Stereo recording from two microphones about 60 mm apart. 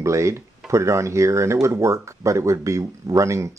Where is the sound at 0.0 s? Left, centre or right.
Right.